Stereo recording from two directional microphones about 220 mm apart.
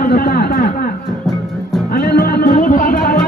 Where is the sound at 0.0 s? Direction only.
40° left (ahead or behind).